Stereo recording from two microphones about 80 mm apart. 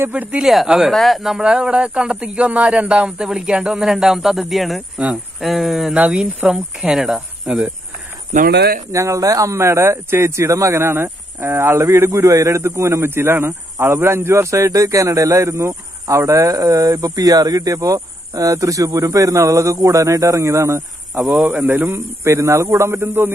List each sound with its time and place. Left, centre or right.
0.0 s speech: right
0.4 s speech: centre
5.9 s speech: centre
6.9 s speech: centre
8.9 s speech: right
21.5 s speech: right